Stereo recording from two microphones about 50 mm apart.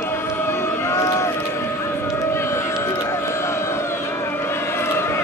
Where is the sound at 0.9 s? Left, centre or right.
Left.